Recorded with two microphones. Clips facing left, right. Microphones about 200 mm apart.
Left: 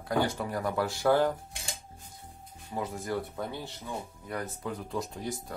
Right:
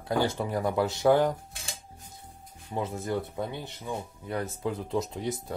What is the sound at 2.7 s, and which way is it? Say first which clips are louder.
Speech: right 2 dB; 25° right (ahead or behind).